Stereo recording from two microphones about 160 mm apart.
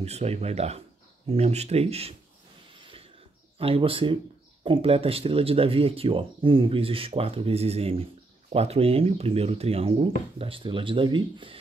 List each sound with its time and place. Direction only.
0.0 s speech: 40° right (ahead or behind)
2.8 s a sound: 35° right (ahead or behind)
3.5 s speech: 35° right (ahead or behind)